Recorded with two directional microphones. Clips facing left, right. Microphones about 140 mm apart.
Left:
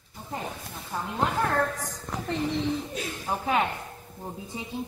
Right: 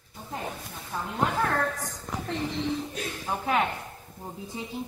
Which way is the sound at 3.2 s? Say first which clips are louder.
Left 1 dB; 5° left (ahead or behind).